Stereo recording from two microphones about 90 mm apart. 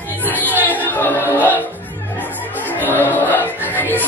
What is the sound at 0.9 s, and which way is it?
Music, 25° left (ahead or behind).